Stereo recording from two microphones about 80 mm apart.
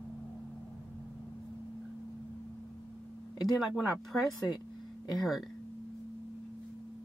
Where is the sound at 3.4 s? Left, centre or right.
Centre.